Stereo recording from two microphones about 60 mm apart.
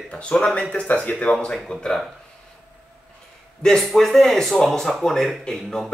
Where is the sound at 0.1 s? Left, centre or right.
Centre.